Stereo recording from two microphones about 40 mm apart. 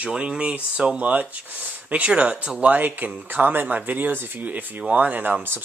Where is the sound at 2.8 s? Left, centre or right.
Right.